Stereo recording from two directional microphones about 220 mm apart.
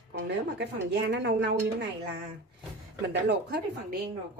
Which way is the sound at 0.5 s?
50° right (ahead or behind).